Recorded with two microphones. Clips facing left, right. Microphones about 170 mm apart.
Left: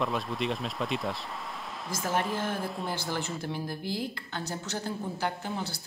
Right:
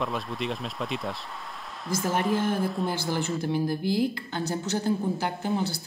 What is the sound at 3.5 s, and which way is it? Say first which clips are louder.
A woman's voice: right 8 dB; 10° right (ahead or behind).